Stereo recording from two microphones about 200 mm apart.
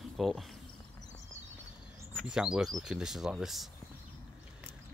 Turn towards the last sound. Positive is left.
turn(degrees=0)  # may be behind; listen again after turning